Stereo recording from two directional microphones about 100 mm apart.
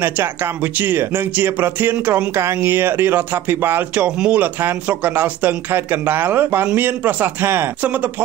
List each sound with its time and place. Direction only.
0.7 s speech: 20° right (ahead or behind)